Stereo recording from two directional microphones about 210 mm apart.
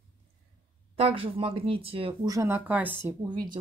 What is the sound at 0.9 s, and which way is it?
Speech, 25° right (ahead or behind).